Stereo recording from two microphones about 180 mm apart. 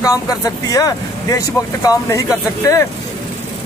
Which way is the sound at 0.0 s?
20° left (ahead or behind).